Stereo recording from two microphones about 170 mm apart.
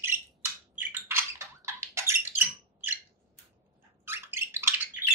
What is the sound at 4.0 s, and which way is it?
Bathtub, 15° right (ahead or behind).